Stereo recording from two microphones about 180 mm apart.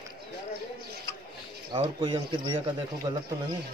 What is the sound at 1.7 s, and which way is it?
A man's voice, 25° right (ahead or behind).